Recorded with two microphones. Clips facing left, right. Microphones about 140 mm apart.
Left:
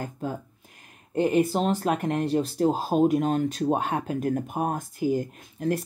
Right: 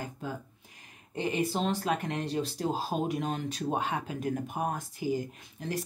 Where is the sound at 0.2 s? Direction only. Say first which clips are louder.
Left 7 dB; 45° left (ahead or behind).